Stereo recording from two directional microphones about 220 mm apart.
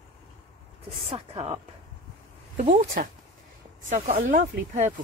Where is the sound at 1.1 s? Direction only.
25° right (ahead or behind).